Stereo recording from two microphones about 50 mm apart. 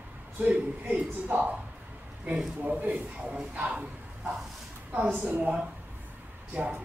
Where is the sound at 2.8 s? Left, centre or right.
Right.